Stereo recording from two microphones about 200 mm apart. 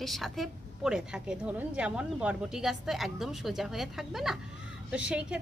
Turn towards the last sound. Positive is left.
turn(degrees=-5)  # may be behind; listen again after turning